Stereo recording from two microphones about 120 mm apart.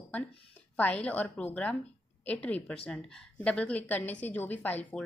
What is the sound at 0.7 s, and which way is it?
A woman's voice, 10° left (ahead or behind).